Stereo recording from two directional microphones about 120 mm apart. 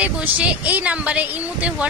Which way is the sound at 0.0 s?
10° right (ahead or behind).